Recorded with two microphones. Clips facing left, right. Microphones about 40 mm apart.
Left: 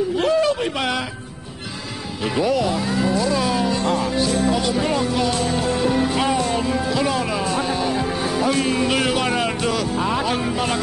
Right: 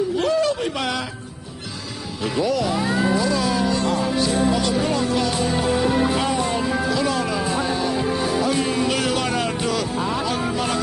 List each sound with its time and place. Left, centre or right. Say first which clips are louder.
0.2 s a sound: left 3 dB; left
2.2 s speech: left 2 dB; left
2.8 s speech: even; centre
3.3 s music: left 1 dB; centre
6.9 s music: left 1 dB; centre
9.1 s speech: left 2 dB; centre